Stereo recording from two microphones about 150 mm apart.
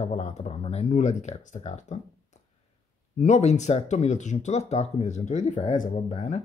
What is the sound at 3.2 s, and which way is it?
Speech, 50° left (ahead or behind).